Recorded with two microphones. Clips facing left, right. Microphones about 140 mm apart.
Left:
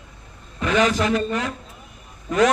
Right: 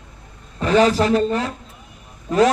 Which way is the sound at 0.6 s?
35° right (ahead or behind).